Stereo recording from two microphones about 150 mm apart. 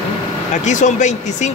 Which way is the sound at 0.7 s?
55° left (ahead or behind).